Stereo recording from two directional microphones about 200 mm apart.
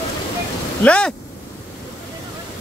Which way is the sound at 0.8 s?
5° left (ahead or behind).